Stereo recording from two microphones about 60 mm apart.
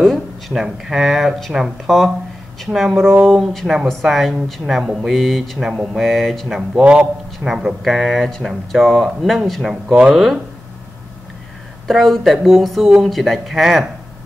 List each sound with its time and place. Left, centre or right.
0.0 s speech: centre
6.7 s a man's voice: centre
11.9 s speech: centre